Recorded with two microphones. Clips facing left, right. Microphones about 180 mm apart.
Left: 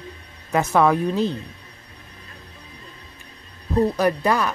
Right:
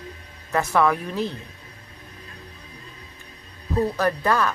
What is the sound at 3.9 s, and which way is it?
Speech, 15° left (ahead or behind).